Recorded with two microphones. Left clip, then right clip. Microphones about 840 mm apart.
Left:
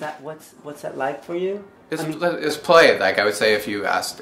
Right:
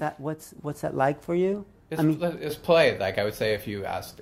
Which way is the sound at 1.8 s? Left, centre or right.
Right.